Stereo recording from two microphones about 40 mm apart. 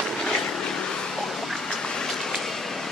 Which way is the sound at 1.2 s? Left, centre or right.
Centre.